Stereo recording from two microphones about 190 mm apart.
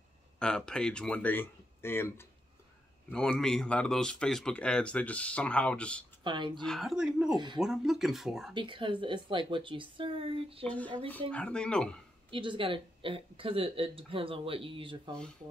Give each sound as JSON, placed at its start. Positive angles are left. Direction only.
{"t": 0.4, "sound": "speech", "side_deg": 5}
{"t": 6.2, "sound": "speech", "side_deg": -25}
{"t": 6.6, "sound": "speech", "side_deg": 0}
{"t": 8.5, "sound": "speech", "side_deg": -25}
{"t": 11.1, "sound": "speech", "side_deg": 10}
{"t": 12.3, "sound": "speech", "side_deg": -25}